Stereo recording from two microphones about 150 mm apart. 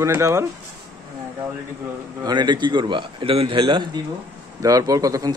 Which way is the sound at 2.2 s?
30° right (ahead or behind).